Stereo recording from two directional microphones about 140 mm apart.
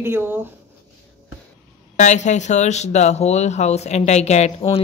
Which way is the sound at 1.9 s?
55° left (ahead or behind).